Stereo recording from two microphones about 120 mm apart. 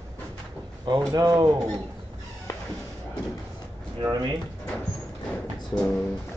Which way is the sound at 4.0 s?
35° right (ahead or behind).